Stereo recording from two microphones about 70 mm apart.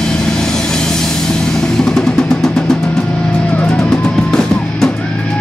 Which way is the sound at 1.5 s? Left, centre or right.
Centre.